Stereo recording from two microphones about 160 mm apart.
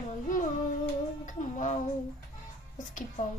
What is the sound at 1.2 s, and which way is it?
Speech, 50° left (ahead or behind).